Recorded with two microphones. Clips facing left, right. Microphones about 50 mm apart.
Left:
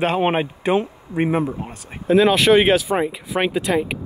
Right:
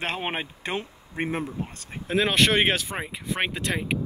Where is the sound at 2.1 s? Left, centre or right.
Centre.